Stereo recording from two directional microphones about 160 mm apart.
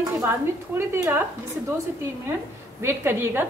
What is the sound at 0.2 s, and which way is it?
A woman's voice, 15° right (ahead or behind).